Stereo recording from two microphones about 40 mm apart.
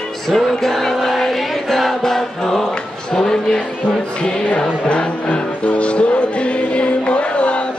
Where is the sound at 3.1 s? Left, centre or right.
Centre.